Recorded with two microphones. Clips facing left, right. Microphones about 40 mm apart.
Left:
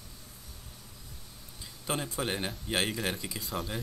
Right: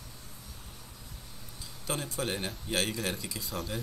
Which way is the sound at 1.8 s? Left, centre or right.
Centre.